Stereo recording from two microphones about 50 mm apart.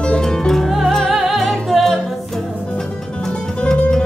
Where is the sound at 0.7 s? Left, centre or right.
Centre.